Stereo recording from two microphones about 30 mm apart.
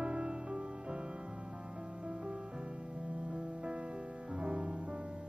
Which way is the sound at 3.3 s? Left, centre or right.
Right.